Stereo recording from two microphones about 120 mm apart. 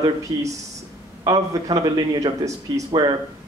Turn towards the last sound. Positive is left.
turn(degrees=-40)  # may be behind; listen again after turning